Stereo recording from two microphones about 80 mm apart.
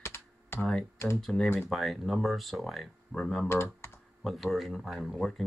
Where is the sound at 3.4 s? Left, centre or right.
Left.